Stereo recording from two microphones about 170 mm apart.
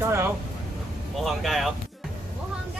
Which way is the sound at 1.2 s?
Centre (ahead or behind).